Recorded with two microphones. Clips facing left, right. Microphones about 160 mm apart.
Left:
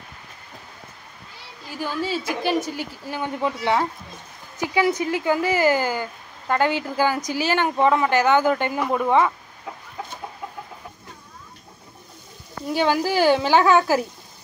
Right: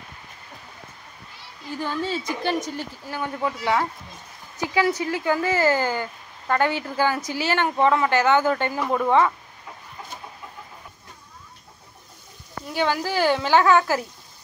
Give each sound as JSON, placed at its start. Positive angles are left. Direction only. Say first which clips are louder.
{"t": 1.7, "sound": "a woman's voice", "louder": "left 1 dB", "side_deg": 5}
{"t": 3.2, "sound": "speech", "louder": "left 2 dB", "side_deg": 20}
{"t": 12.7, "sound": "speech", "louder": "left 3 dB", "side_deg": 15}